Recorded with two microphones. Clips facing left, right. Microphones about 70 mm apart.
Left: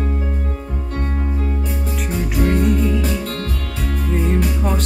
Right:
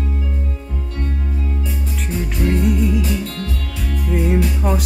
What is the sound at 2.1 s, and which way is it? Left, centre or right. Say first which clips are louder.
Music: left 2 dB; centre.